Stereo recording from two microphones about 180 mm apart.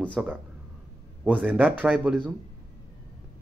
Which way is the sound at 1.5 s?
10° right (ahead or behind).